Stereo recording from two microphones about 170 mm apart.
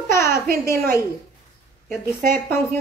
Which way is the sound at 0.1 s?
15° left (ahead or behind).